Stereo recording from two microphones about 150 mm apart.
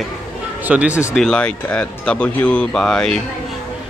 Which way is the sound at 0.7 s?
10° right (ahead or behind).